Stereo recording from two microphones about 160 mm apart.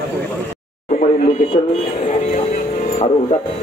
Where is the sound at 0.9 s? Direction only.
45° left (ahead or behind).